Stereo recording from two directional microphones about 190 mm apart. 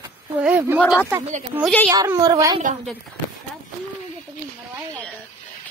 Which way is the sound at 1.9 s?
20° right (ahead or behind).